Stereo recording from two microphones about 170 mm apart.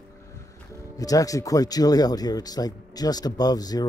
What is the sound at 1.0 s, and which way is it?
Speech, 20° left (ahead or behind).